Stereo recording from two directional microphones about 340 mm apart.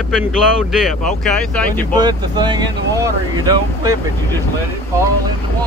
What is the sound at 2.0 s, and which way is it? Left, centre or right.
Speech, centre.